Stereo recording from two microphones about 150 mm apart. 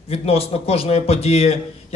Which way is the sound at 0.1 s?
40° left (ahead or behind).